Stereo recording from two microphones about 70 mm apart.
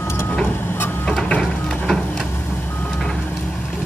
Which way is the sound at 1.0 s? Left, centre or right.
Centre.